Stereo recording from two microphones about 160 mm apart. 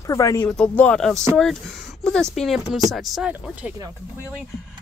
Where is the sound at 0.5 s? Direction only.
5° left (ahead or behind).